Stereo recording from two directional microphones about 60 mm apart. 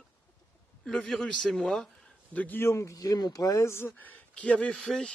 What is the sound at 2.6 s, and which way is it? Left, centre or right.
Speech, left.